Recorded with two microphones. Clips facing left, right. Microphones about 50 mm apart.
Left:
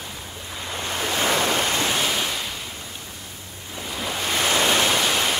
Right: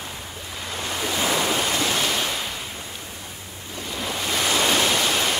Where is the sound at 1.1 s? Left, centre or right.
Left.